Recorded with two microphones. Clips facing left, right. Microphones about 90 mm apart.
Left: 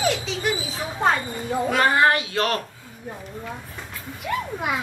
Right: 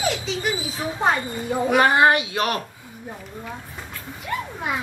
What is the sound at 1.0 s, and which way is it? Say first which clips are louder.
A child's voice: even; 15° right (ahead or behind).